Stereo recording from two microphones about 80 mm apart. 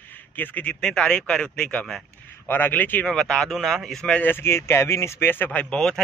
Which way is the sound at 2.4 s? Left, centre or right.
Left.